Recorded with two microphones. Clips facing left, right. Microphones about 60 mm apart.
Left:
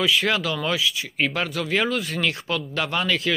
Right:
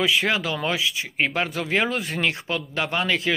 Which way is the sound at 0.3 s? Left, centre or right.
Right.